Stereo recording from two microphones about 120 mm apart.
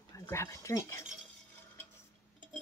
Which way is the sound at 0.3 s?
25° left (ahead or behind).